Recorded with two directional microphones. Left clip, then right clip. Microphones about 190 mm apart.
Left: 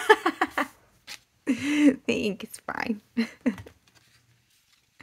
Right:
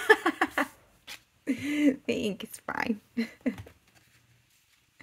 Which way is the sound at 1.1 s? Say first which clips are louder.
Left 4 dB; 20° left (ahead or behind).